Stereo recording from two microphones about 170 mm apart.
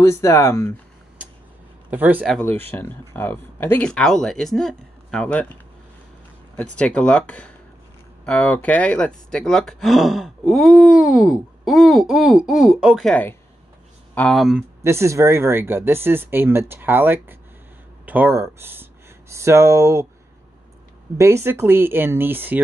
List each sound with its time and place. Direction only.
0.0 s speech: 15° left (ahead or behind)
1.9 s speech: 10° right (ahead or behind)
2.2 s speech: 5° left (ahead or behind)
6.5 s speech: 5° left (ahead or behind)
14.8 s speech: 15° right (ahead or behind)
21.2 s speech: 15° right (ahead or behind)